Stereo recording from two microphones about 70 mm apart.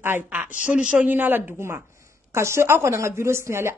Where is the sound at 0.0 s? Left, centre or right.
Right.